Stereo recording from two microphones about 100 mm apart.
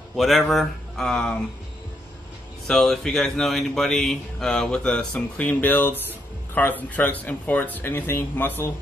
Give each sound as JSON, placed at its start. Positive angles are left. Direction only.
{"t": 0.1, "sound": "speech", "side_deg": 0}
{"t": 2.6, "sound": "speech", "side_deg": 5}